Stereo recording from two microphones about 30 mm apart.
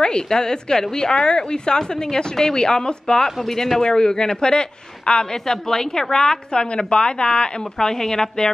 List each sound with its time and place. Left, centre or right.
0.0 s a woman's voice: left
5.5 s a woman's voice: centre
7.8 s speech: centre